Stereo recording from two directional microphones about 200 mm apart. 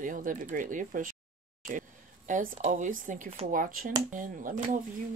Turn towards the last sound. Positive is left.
turn(degrees=-40)  # may be behind; listen again after turning